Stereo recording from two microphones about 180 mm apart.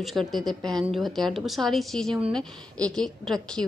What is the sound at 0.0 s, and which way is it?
A woman's voice, centre (ahead or behind).